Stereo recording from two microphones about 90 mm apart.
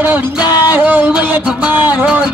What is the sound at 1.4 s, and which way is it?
Music, 10° right (ahead or behind).